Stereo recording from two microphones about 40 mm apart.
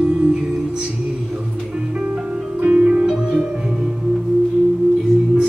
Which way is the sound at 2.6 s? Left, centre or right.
Right.